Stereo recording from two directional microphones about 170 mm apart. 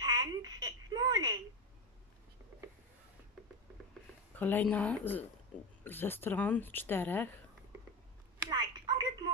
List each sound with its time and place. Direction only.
0.0 s telephone: 25° right (ahead or behind)
4.4 s speech: 10° left (ahead or behind)
8.5 s a sound: 25° right (ahead or behind)